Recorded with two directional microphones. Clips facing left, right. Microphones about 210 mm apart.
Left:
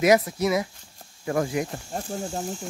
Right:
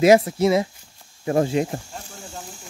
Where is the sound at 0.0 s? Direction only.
25° right (ahead or behind).